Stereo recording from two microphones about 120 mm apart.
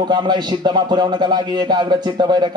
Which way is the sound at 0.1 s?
40° right (ahead or behind).